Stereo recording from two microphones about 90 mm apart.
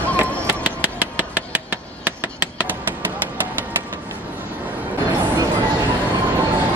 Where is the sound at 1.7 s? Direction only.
20° right (ahead or behind).